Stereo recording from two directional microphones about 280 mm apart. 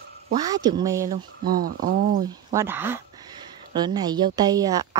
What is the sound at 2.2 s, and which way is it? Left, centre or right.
Speech, centre.